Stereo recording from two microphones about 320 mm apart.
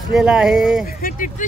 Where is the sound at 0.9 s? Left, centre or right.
Left.